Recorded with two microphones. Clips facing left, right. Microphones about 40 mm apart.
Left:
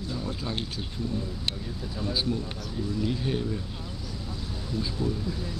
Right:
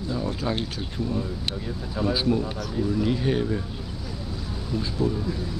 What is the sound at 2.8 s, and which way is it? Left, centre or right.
Speech, right.